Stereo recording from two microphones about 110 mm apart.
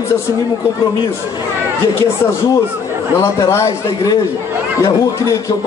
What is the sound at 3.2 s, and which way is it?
A man's voice, 25° left (ahead or behind).